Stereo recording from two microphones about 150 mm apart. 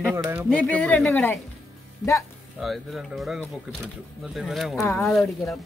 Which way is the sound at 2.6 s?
Centre (ahead or behind).